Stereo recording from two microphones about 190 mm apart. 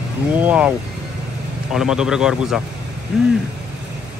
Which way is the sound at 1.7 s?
5° right (ahead or behind).